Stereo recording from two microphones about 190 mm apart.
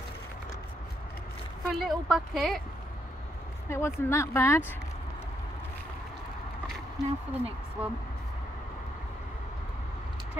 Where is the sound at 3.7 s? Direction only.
15° left (ahead or behind).